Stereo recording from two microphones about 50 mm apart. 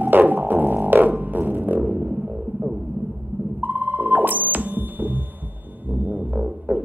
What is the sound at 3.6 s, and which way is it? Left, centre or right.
Ringtone, right.